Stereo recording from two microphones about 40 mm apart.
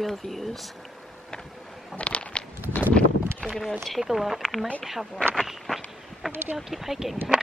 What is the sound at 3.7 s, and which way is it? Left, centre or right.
Speech, centre.